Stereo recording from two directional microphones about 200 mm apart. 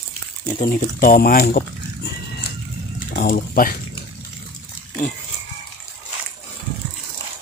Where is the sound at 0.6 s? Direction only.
45° left (ahead or behind).